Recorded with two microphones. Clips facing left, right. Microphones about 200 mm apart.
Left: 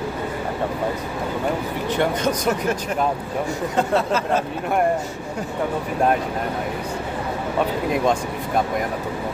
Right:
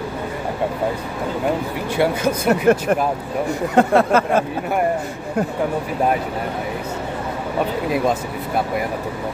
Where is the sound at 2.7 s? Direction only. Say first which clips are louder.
Right 6 dB; 60° right (ahead or behind).